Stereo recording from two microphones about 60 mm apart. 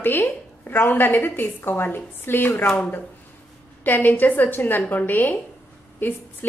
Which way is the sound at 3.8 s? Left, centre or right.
Left.